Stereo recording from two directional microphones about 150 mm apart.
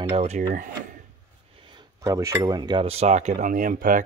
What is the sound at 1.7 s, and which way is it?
Cutlery, 25° right (ahead or behind).